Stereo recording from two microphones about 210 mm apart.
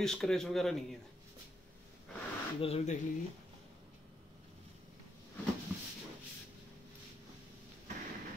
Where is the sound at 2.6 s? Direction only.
30° left (ahead or behind).